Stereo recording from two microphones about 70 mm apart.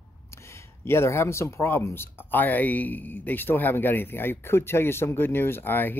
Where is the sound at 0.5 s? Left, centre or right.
Left.